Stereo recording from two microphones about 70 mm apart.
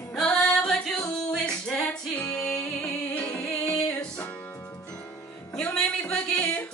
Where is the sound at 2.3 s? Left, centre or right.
Centre.